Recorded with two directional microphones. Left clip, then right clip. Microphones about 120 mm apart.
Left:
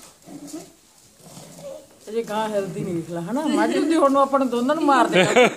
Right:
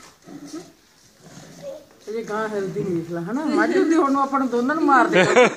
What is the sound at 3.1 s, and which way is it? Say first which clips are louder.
A man's voice: even; 40° left (ahead or behind).